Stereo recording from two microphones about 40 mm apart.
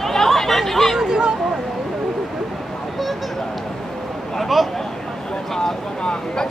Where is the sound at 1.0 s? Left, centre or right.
Centre.